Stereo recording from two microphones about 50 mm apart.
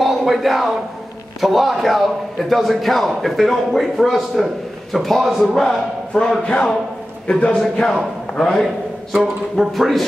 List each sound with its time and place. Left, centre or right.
0.0 s a man's voice: centre
7.2 s a man's voice: centre
8.5 s a man's voice: centre